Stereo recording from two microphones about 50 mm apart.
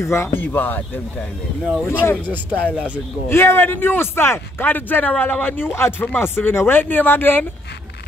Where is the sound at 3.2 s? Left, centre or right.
Left.